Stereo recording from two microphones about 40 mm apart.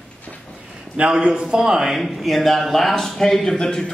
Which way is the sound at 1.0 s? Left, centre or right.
Right.